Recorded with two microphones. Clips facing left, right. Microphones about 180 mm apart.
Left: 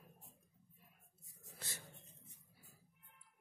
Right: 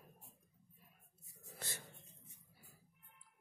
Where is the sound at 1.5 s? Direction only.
60° right (ahead or behind).